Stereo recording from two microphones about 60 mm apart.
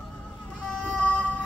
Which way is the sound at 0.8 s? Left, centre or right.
Left.